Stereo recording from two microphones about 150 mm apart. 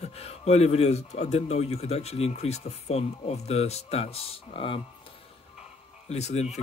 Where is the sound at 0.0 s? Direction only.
40° left (ahead or behind).